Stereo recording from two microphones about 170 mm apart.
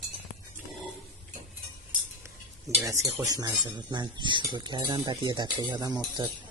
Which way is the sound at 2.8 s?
20° right (ahead or behind).